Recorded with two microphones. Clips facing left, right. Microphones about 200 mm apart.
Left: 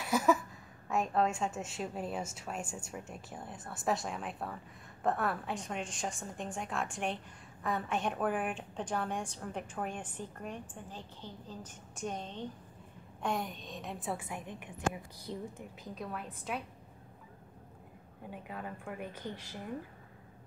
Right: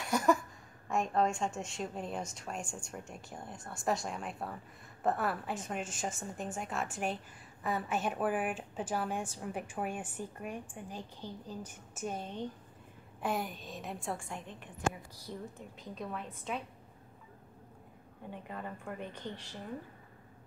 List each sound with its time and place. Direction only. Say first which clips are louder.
0.0 s a woman's voice: even; 5° left (ahead or behind)
15.3 s speech: left 2 dB; 20° left (ahead or behind)
15.8 s a woman's voice: right 1 dB; centre (ahead or behind)
18.3 s a woman's voice: even; 5° left (ahead or behind)